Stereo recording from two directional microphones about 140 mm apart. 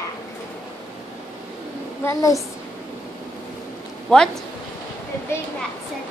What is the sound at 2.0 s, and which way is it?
Speech, 20° left (ahead or behind).